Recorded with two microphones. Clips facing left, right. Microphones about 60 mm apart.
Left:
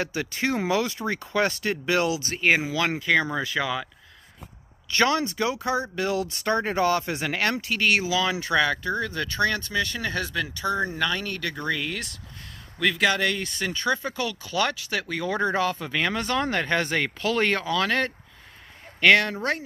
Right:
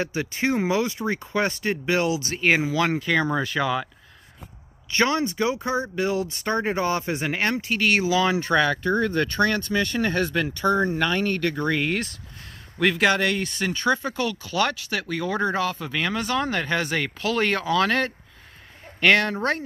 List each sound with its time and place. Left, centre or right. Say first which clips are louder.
0.0 s speech: right 2 dB; centre
3.0 s speech: even; centre
4.9 s speech: even; centre
8.1 s speech: right 3 dB; right
14.7 s speech: right 1 dB; centre
15.9 s speech: even; centre
17.6 s speech: right 3 dB; centre